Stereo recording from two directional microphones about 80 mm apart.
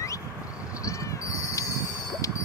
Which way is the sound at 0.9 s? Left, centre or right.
Left.